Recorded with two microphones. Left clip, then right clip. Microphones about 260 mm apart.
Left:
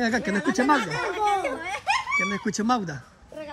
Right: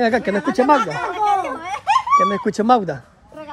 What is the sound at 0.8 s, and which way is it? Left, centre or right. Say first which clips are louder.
Snicker: right 6 dB; right.